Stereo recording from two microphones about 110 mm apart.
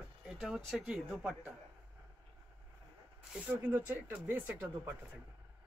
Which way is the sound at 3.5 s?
20° right (ahead or behind).